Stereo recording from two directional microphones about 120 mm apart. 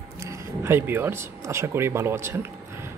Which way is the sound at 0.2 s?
20° right (ahead or behind).